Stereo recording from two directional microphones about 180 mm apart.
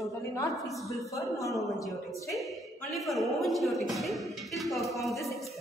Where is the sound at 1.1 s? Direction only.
20° left (ahead or behind).